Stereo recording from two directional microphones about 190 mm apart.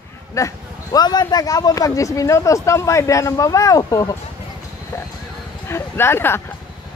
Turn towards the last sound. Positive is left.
turn(degrees=10)  # may be behind; listen again after turning